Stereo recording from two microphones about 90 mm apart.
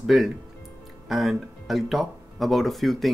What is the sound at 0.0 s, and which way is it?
Speech, centre (ahead or behind).